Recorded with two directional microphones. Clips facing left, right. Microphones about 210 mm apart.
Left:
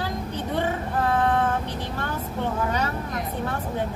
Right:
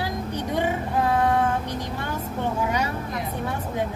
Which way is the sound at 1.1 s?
15° right (ahead or behind).